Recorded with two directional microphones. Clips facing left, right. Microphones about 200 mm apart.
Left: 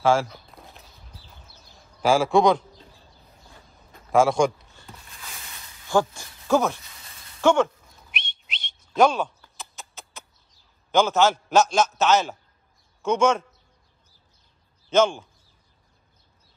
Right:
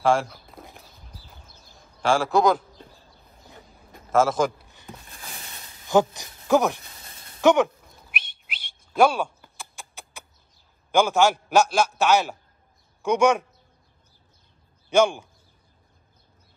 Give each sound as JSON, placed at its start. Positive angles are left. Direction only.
{"t": 0.0, "sound": "speech", "side_deg": 0}
{"t": 2.0, "sound": "a man's voice", "side_deg": 0}
{"t": 4.1, "sound": "a man's voice", "side_deg": 0}
{"t": 4.6, "sound": "a sound", "side_deg": -15}
{"t": 5.9, "sound": "speech", "side_deg": -15}
{"t": 7.0, "sound": "a sound", "side_deg": -40}
{"t": 7.4, "sound": "whistling", "side_deg": -15}
{"t": 10.9, "sound": "a man's voice", "side_deg": -10}
{"t": 14.9, "sound": "a man's voice", "side_deg": -10}